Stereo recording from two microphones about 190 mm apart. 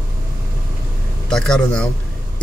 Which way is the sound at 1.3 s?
5° left (ahead or behind).